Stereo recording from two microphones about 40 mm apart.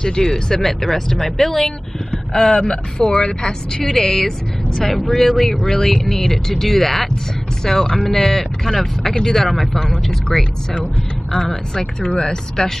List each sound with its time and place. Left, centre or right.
0.0 s speech: centre
11.8 s speech: centre